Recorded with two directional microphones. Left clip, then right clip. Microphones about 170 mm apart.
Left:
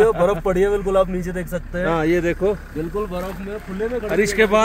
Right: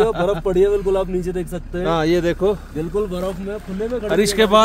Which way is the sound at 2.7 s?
90° right.